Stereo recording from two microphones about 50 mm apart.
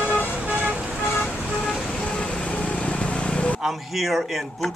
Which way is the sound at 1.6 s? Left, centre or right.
Centre.